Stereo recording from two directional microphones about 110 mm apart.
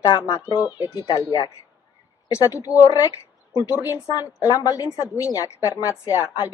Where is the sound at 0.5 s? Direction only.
35° left (ahead or behind).